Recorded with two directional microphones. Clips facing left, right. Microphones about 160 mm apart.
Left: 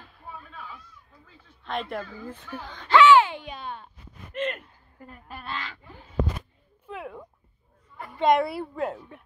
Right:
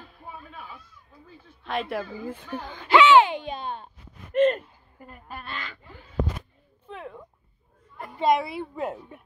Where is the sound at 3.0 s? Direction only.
20° right (ahead or behind).